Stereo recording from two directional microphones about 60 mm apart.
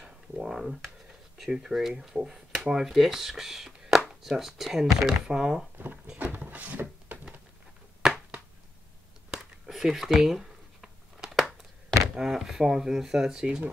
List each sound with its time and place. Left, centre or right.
0.0 s speech: centre
5.8 s speech: right
6.1 s a sound: right
8.0 s finger snapping: centre
9.3 s a sound: centre
12.2 s speech: centre